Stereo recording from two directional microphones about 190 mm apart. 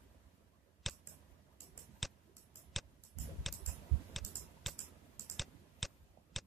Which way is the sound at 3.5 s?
Centre (ahead or behind).